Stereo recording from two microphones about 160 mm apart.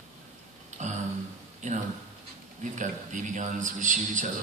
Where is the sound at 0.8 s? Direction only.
50° right (ahead or behind).